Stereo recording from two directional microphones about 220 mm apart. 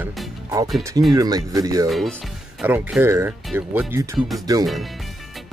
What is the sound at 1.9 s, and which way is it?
Speech, centre (ahead or behind).